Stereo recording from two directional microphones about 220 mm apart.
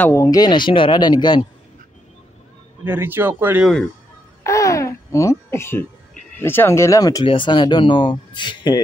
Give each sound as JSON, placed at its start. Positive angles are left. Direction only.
{"t": 0.0, "sound": "speech", "side_deg": 15}
{"t": 2.8, "sound": "speech", "side_deg": -10}
{"t": 4.4, "sound": "speech", "side_deg": 15}